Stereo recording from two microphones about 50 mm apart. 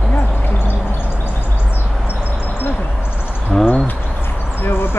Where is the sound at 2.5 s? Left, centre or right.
Left.